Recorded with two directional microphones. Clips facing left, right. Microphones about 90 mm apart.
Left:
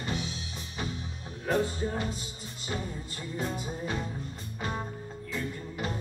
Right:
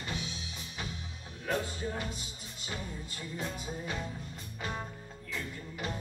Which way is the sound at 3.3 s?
35° left (ahead or behind).